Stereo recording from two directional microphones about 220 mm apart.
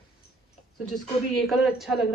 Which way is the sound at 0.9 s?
Centre (ahead or behind).